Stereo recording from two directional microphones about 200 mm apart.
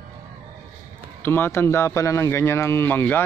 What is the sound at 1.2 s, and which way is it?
A man's voice, 10° left (ahead or behind).